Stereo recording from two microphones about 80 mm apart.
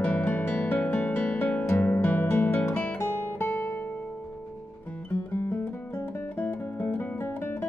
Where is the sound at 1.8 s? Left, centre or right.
Left.